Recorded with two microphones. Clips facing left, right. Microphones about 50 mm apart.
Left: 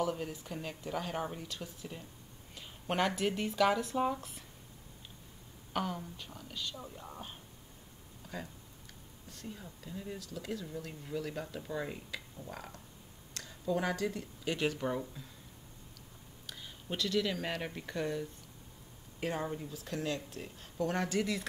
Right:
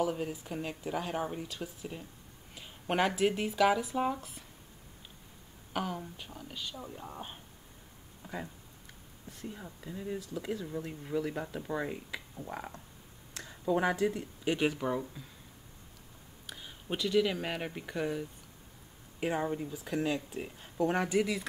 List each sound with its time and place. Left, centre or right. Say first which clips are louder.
0.0 s speech: right 3 dB; centre
5.7 s speech: right 1 dB; centre
8.2 s a sound: right 3 dB; right
9.3 s speech: right 3 dB; right
14.8 s speech: right 2 dB; centre
16.4 s speech: right 3 dB; centre